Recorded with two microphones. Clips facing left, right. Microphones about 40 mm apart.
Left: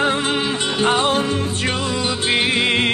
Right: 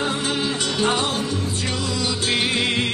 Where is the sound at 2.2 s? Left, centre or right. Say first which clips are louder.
Left 4 dB; left.